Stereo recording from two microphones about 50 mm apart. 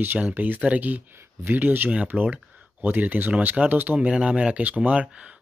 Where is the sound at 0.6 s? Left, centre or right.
Right.